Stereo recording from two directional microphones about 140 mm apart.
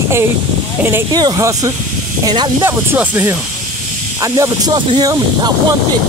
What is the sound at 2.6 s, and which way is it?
Speech, 15° right (ahead or behind).